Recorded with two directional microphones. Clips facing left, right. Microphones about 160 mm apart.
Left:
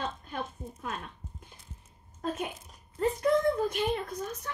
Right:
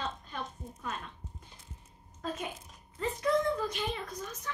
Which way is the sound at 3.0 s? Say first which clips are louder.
Left 4 dB; 55° left (ahead or behind).